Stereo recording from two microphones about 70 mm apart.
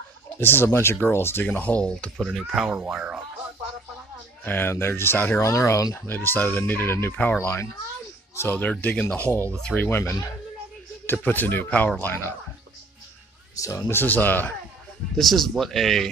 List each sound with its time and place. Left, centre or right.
0.4 s speech: left
1.4 s speech: left
2.1 s speech: centre
4.5 s speech: left
5.4 s speech: left
5.9 s speech: left
8.5 s speech: left
9.8 s speech: left
13.6 s speech: left
13.8 s speech: left
15.1 s speech: centre